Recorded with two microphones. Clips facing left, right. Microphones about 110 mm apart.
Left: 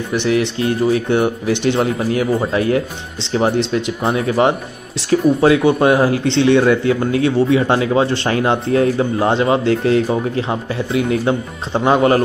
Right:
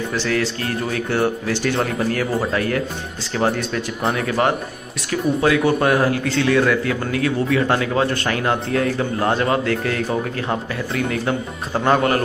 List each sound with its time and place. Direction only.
0.1 s a man's voice: 20° left (ahead or behind)